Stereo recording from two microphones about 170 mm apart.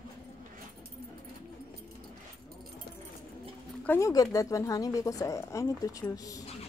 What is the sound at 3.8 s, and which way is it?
A woman's voice, 15° left (ahead or behind).